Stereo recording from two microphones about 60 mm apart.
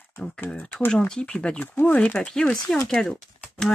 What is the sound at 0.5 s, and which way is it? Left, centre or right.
Speech, left.